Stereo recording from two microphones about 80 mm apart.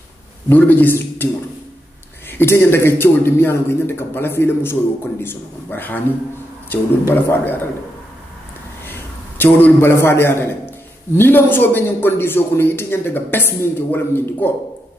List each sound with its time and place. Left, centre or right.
0.5 s a man's voice: left
2.3 s a man's voice: left
7.1 s a man's voice: left
9.4 s a man's voice: left